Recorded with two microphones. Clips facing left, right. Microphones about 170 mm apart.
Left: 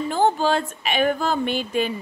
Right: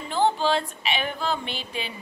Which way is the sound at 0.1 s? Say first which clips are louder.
Left 1 dB; 45° left (ahead or behind).